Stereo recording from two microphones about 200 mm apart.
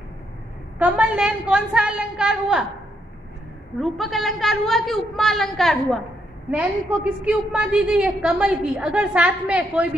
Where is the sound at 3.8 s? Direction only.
Centre (ahead or behind).